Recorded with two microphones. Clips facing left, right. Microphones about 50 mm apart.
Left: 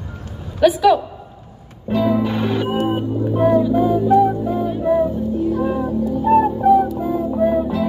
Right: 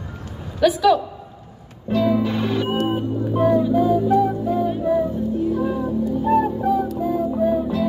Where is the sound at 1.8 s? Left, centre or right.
Left.